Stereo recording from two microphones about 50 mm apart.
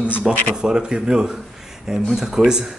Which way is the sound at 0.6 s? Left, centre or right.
Centre.